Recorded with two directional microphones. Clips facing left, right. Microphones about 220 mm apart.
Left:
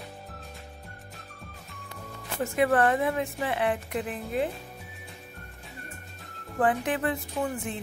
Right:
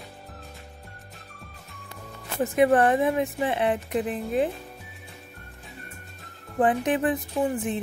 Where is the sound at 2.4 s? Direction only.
20° right (ahead or behind).